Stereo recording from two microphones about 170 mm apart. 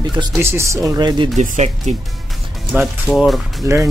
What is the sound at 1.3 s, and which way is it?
Speech, 45° right (ahead or behind).